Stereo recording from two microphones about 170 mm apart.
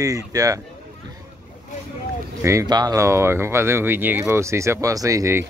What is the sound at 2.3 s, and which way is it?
Speech, 15° right (ahead or behind).